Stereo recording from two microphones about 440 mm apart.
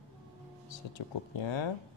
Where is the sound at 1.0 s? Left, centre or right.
Left.